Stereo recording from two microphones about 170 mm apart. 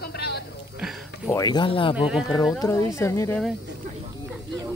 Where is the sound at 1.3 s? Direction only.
25° left (ahead or behind).